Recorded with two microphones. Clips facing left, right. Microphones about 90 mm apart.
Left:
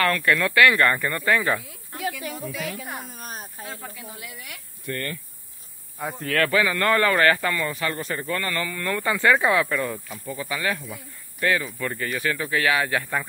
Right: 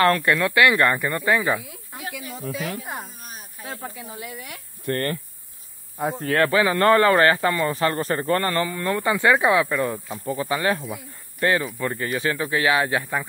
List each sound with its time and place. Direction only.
0.0 s speech: 25° right (ahead or behind); by 1.8 s 10° right (ahead or behind)
3.2 s snake: 40° left (ahead or behind)
3.6 s speech: 25° right (ahead or behind)
4.8 s speech: 45° right (ahead or behind)
5.9 s speech: 25° right (ahead or behind)
10.0 s speech: 30° right (ahead or behind)